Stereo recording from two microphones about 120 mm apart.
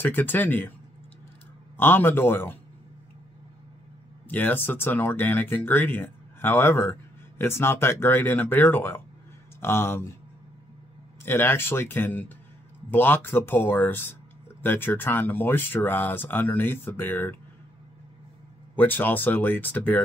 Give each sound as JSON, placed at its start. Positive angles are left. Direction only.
{"t": 0.0, "sound": "speech", "side_deg": 15}
{"t": 1.8, "sound": "speech", "side_deg": 20}
{"t": 4.3, "sound": "speech", "side_deg": 15}
{"t": 11.2, "sound": "speech", "side_deg": 20}
{"t": 18.8, "sound": "speech", "side_deg": 15}